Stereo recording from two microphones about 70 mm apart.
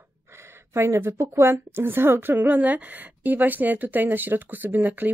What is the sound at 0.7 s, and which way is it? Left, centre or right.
A woman's voice, right.